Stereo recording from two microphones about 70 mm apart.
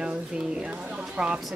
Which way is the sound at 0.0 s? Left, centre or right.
Centre.